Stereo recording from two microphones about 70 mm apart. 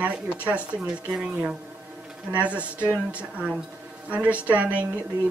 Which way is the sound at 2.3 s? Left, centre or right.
Centre.